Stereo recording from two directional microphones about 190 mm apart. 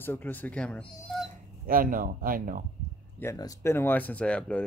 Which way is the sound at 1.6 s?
45° right (ahead or behind).